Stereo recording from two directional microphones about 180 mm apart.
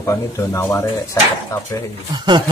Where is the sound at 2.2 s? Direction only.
25° right (ahead or behind).